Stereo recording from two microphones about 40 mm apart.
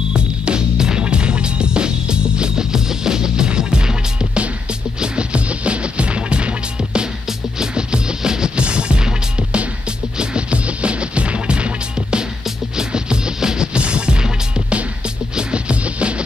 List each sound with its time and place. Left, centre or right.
0.1 s music: right